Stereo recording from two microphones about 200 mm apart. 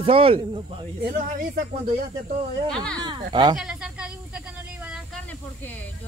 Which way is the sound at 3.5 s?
5° right (ahead or behind).